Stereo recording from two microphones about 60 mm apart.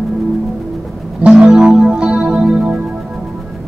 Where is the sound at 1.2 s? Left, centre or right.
Centre.